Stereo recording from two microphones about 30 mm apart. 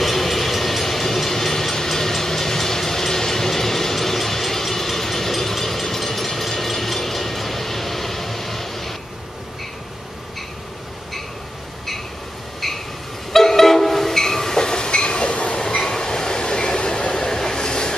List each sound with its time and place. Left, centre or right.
0.0 s train: centre
12.6 s train: centre; by 15.6 s left
15.8 s train: centre
17.1 s train: centre